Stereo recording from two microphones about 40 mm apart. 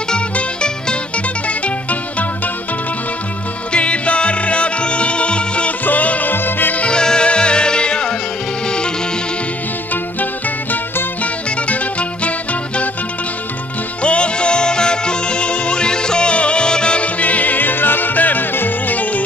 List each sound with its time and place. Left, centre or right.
0.4 s music: left
3.7 s music: left
5.9 s music: left
6.3 s music: left
6.9 s music: left
11.6 s music: left
14.0 s music: left
17.2 s music: left